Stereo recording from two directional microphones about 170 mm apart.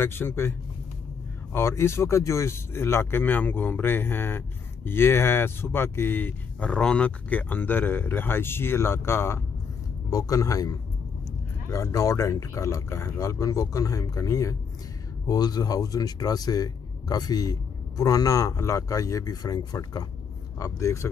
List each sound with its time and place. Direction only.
0.0 s speech: 15° left (ahead or behind)